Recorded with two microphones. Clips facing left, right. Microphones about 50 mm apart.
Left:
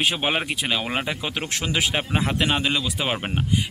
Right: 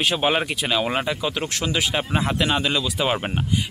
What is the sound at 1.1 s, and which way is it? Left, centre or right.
Speech, left.